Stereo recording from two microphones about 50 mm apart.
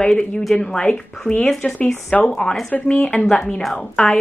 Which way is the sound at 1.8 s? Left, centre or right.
Left.